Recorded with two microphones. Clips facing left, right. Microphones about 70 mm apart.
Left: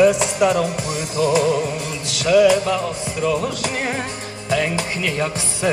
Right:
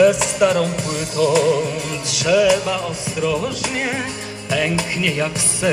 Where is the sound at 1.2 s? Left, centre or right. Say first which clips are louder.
Right 2 dB; left.